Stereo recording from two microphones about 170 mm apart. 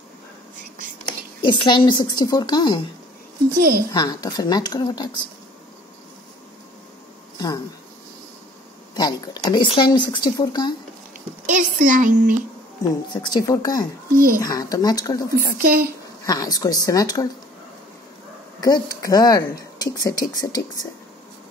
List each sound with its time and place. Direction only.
1.4 s speech: 25° left (ahead or behind)
3.5 s a woman's voice: 55° right (ahead or behind)
3.9 s speech: 25° left (ahead or behind)
7.3 s speech: 20° left (ahead or behind)
8.9 s speech: 25° left (ahead or behind)
11.4 s speech: 50° right (ahead or behind)
13.1 s speech: 25° left (ahead or behind)
14.1 s a woman's voice: 55° right (ahead or behind)
14.4 s speech: 20° left (ahead or behind)
15.3 s a woman's voice: 60° right (ahead or behind)
16.3 s speech: 20° left (ahead or behind)
18.6 s speech: 20° left (ahead or behind)